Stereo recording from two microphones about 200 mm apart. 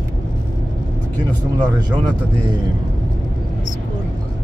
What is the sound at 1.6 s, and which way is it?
Speech, 20° right (ahead or behind).